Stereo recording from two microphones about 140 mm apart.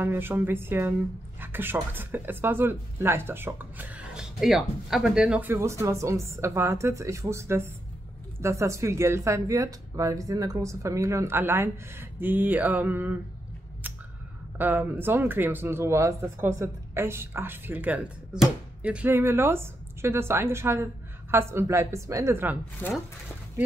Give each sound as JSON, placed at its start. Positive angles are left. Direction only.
{"t": 0.0, "sound": "speech", "side_deg": -15}
{"t": 5.5, "sound": "speech", "side_deg": -20}
{"t": 13.8, "sound": "a sound", "side_deg": -15}
{"t": 14.6, "sound": "speech", "side_deg": -15}
{"t": 22.8, "sound": "speech", "side_deg": 15}